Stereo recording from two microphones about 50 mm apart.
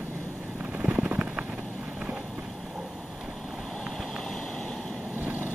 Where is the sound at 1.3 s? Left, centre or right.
Right.